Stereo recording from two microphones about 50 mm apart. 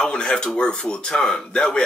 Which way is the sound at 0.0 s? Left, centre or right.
Centre.